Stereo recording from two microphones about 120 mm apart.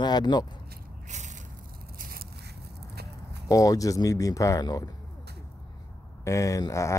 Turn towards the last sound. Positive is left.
turn(degrees=25)  # may be behind; listen again after turning